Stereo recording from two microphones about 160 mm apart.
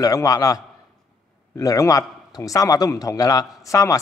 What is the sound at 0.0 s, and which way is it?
Speech, 20° left (ahead or behind).